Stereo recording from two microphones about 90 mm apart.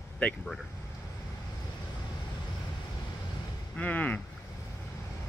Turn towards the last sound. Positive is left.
turn(degrees=15)  # may be behind; listen again after turning